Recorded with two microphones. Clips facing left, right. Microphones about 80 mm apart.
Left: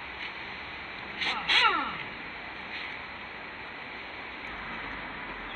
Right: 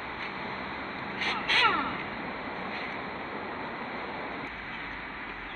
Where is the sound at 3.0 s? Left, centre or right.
Right.